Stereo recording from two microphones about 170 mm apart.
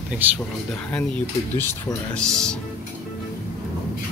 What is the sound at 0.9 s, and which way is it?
Speech, 5° left (ahead or behind).